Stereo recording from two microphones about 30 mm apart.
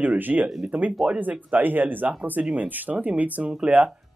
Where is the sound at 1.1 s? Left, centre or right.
Right.